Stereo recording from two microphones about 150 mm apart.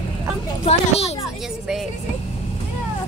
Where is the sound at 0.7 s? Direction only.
45° left (ahead or behind).